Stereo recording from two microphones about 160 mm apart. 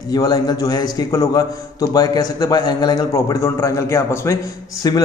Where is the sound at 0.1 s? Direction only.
25° left (ahead or behind).